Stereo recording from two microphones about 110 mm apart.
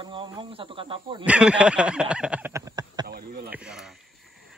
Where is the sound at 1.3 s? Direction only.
10° right (ahead or behind).